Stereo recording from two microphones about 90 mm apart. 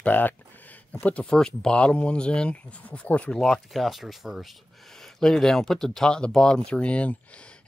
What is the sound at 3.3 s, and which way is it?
Speech, centre (ahead or behind).